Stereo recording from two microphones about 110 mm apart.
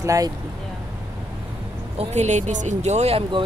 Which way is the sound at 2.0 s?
90° right.